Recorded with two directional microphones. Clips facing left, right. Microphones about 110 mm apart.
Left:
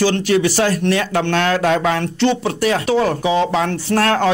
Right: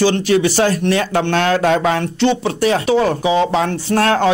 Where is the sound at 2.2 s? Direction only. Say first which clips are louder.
Right 1 dB; 20° right (ahead or behind).